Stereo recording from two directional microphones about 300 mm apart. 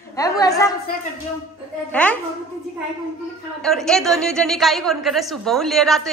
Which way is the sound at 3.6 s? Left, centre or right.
Centre.